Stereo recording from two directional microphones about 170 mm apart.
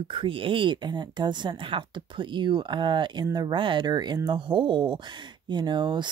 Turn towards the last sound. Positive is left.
turn(degrees=-25)  # may be behind; listen again after turning